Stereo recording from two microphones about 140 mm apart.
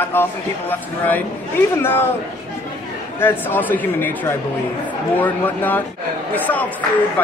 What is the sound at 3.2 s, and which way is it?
Speech, 15° left (ahead or behind).